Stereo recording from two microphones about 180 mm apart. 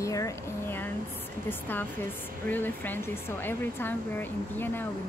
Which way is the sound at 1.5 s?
10° left (ahead or behind).